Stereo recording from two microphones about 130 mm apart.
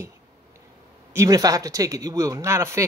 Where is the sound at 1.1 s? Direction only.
25° right (ahead or behind).